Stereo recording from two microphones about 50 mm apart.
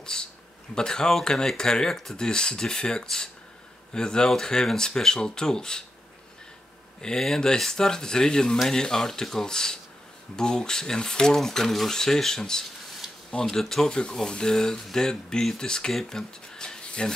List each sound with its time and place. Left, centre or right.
0.0 s a sound: centre
0.7 s speech: centre
7.0 s speech: centre